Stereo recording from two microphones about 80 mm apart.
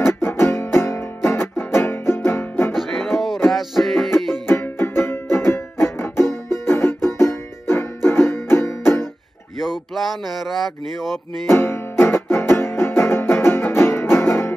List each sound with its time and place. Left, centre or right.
0.0 s music: left
2.7 s music: centre
4.5 s music: left
9.6 s a sound: centre
11.4 s music: left